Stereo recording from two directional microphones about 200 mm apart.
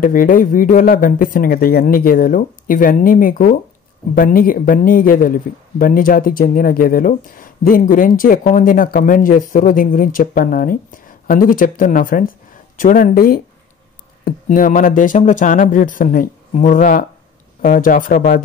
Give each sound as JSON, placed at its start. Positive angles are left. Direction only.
{"t": 0.0, "sound": "speech", "side_deg": 45}